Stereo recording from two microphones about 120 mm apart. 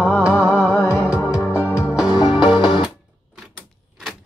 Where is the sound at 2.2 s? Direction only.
40° left (ahead or behind).